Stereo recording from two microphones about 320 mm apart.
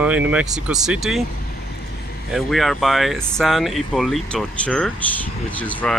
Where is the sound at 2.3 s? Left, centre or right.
Centre.